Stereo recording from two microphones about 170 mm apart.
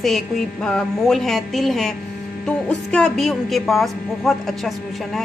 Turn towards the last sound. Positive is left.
turn(degrees=0)  # may be behind; listen again after turning